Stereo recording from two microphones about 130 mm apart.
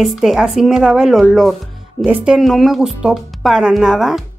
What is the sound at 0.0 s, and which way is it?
Speech, 5° right (ahead or behind).